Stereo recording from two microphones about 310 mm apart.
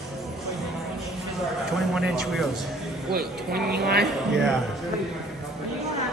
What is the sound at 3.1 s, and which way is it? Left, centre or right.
Speech, right.